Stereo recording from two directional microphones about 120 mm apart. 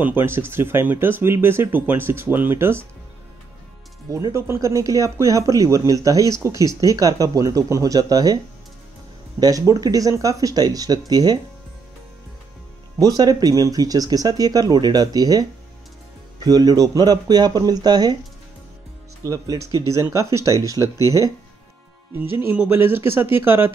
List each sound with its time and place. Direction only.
0.0 s speech: 20° right (ahead or behind)
4.1 s speech: 25° right (ahead or behind)
9.4 s speech: 30° right (ahead or behind)
13.0 s speech: 30° right (ahead or behind)
19.2 s speech: 30° right (ahead or behind)
22.4 s speech: 15° right (ahead or behind)